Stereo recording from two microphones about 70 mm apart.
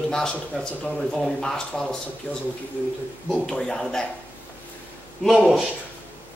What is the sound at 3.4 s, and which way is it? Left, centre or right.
Speech, centre.